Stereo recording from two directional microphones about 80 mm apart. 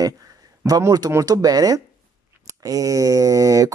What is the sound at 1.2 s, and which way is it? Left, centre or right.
Speech, right.